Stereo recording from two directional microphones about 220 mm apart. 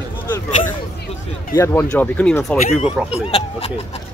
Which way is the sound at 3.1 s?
25° left (ahead or behind).